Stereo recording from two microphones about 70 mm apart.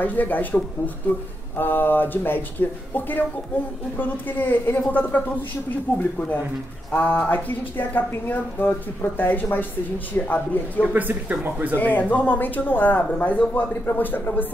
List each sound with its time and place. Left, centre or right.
0.0 s a woman's voice: left
1.6 s a woman's voice: left
10.8 s speech: right
11.7 s a woman's voice: left